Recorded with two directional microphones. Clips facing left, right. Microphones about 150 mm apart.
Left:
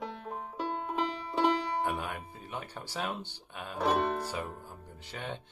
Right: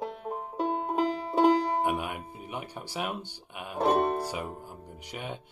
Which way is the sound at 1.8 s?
15° right (ahead or behind).